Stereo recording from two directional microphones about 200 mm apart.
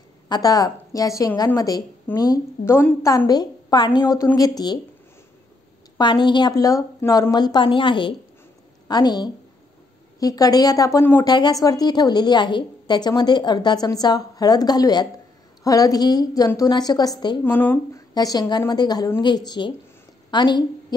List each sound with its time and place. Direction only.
0.3 s a woman's voice: 20° left (ahead or behind)
5.9 s a woman's voice: 20° left (ahead or behind)
17.4 s a woman's voice: 10° left (ahead or behind)